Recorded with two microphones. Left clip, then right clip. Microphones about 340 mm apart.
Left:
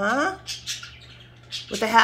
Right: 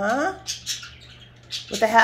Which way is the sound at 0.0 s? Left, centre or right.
Centre.